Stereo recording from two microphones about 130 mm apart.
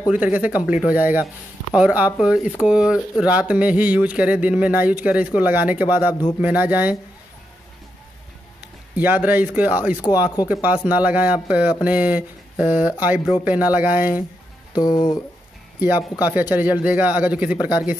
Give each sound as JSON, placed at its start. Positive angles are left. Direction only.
{"t": 0.1, "sound": "speech", "side_deg": -10}
{"t": 8.9, "sound": "speech", "side_deg": -15}
{"t": 14.7, "sound": "speech", "side_deg": 30}
{"t": 16.2, "sound": "speech", "side_deg": -15}